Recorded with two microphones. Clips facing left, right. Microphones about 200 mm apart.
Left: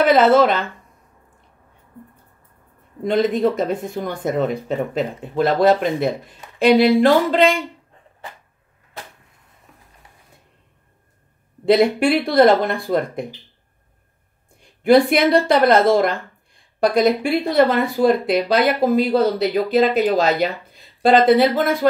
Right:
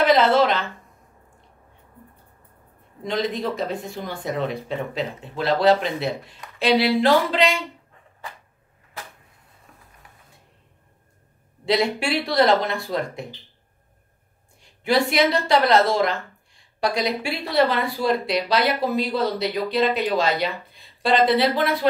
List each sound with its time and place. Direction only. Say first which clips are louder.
0.0 s speech: left 4 dB; 50° left (ahead or behind)
3.0 s speech: left 8 dB; 55° left (ahead or behind)
11.6 s speech: left 7 dB; 55° left (ahead or behind)
14.6 s speech: left 8 dB; 55° left (ahead or behind)